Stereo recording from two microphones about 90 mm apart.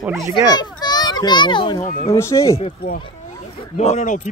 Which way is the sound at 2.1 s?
30° left (ahead or behind).